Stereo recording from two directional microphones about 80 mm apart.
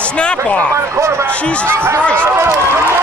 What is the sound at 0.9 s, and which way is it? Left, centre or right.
Speech, right.